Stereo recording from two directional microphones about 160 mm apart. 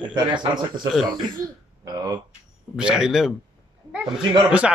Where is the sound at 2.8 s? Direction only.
5° right (ahead or behind).